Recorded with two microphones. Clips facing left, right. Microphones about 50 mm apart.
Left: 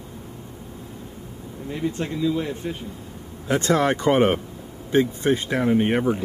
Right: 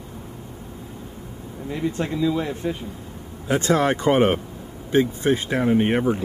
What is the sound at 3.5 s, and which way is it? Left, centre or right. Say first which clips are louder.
Speech: even; centre.